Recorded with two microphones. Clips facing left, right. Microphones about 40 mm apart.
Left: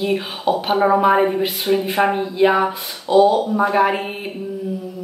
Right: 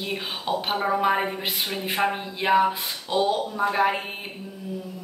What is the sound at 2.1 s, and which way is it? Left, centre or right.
Speech, centre.